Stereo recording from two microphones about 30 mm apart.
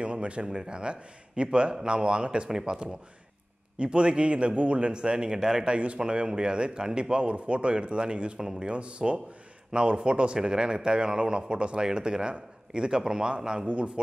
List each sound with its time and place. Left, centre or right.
0.0 s a sound: right
0.5 s speech: right
5.7 s a man's voice: right
5.9 s speech: right
8.4 s speech: right
8.6 s speech: right